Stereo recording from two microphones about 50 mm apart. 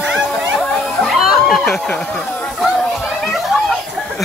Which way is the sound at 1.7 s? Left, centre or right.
Left.